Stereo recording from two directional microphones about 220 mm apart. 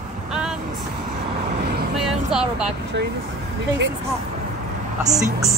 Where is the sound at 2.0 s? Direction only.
Centre (ahead or behind).